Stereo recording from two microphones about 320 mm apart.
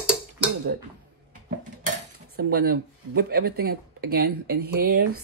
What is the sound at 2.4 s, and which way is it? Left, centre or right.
Speech, right.